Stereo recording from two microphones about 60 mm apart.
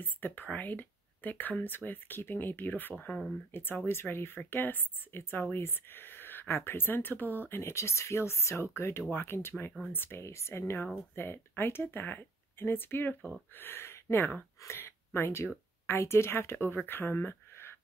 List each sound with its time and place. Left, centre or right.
0.0 s speech: left
3.8 s speech: left
10.2 s speech: left
11.1 s speech: left
14.6 s a sound: left
15.9 s speech: left